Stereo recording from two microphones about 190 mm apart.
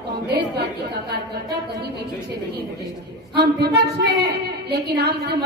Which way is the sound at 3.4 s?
60° right (ahead or behind).